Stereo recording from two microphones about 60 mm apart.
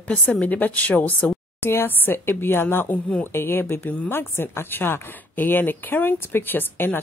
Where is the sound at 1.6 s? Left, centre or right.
Left.